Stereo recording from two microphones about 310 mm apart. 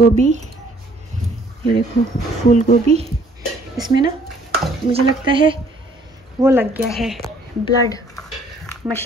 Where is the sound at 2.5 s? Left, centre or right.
Left.